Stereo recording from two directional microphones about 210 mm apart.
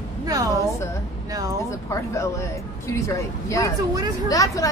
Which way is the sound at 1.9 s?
15° left (ahead or behind).